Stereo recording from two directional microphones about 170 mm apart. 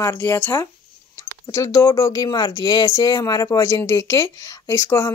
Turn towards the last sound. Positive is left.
turn(degrees=15)  # may be behind; listen again after turning